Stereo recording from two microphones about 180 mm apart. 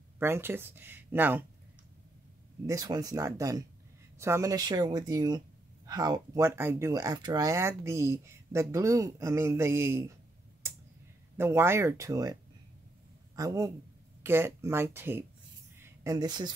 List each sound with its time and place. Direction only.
0.2 s speech: 15° right (ahead or behind)
2.6 s speech: 20° right (ahead or behind)
11.3 s speech: 15° right (ahead or behind)
13.4 s speech: 20° right (ahead or behind)